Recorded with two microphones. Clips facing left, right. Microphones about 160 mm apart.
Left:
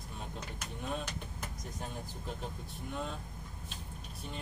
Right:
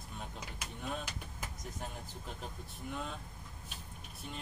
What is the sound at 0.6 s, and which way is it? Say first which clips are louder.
Speech: left 2 dB; 10° right (ahead or behind).